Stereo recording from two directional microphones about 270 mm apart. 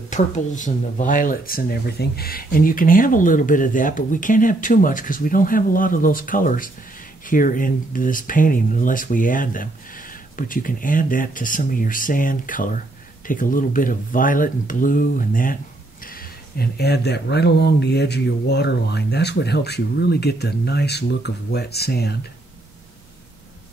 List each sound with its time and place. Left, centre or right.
0.1 s speech: left